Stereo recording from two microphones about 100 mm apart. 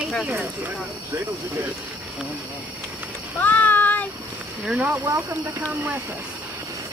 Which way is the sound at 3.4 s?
15° left (ahead or behind).